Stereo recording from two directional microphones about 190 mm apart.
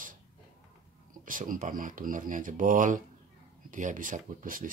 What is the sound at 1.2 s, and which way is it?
Speech, 45° right (ahead or behind).